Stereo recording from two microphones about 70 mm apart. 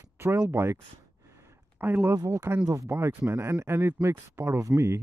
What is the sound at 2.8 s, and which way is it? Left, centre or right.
Speech, right.